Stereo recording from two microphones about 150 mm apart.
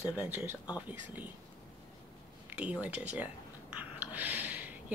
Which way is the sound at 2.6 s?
10° right (ahead or behind).